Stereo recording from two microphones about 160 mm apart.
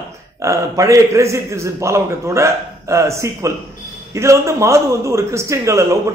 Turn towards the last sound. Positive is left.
turn(degrees=-20)  # may be behind; listen again after turning